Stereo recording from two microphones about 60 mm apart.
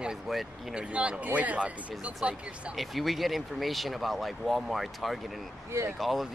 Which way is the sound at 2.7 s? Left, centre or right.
Centre.